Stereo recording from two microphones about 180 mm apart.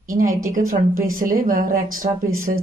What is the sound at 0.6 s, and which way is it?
A woman's voice, 50° right (ahead or behind).